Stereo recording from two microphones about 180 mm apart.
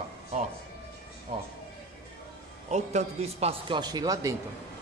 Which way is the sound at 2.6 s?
40° right (ahead or behind).